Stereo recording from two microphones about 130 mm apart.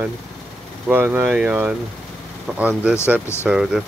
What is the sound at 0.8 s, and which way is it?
Speech, 15° right (ahead or behind).